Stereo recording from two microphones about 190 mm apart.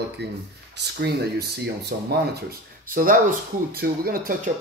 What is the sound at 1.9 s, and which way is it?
Speech, 55° right (ahead or behind).